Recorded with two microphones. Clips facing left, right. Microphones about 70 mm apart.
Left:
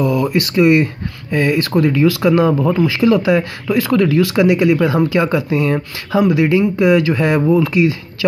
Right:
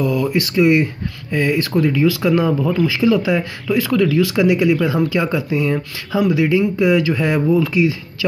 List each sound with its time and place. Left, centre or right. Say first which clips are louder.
0.0 s speech: left 2 dB; left
2.7 s speech: left 2 dB; left
3.0 s speech: left 4 dB; left